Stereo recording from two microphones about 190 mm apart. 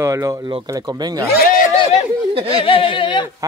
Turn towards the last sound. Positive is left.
turn(degrees=25)  # may be behind; listen again after turning